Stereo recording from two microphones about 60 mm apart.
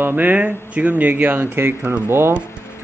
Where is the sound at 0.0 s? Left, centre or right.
Right.